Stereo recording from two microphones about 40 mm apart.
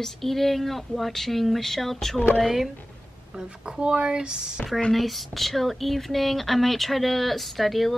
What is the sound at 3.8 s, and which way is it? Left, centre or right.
Speech, right.